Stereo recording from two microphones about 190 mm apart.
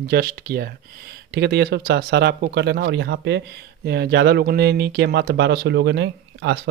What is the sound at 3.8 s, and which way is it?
Speech, 60° right (ahead or behind).